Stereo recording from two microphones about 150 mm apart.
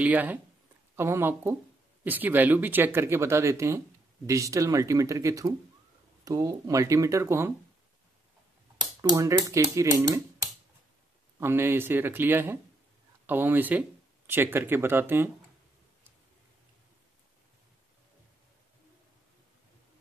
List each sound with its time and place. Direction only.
0.0 s speech: 10° right (ahead or behind)
9.0 s speech: 20° right (ahead or behind)